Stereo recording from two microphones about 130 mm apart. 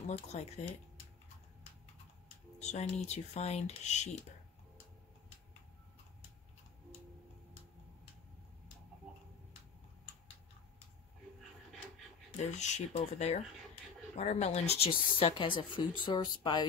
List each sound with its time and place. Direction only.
0.3 s speech: 60° left (ahead or behind)
2.2 s speech: 60° left (ahead or behind)
12.4 s a woman's voice: 65° left (ahead or behind); by 16.6 s 35° left (ahead or behind)